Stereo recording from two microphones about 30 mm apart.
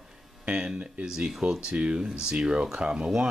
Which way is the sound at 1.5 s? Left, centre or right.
Right.